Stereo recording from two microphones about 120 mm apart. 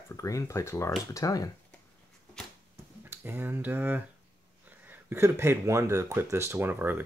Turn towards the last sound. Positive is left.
turn(degrees=-15)  # may be behind; listen again after turning